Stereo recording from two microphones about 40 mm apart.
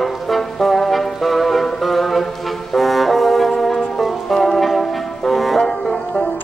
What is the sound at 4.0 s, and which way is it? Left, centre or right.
Music, centre.